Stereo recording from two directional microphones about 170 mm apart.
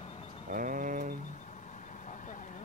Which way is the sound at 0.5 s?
55° right (ahead or behind).